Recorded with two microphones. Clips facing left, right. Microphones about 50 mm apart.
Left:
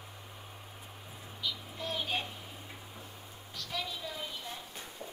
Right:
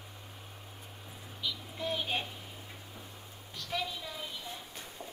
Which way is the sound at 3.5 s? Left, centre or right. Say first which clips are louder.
Right 3 dB; right.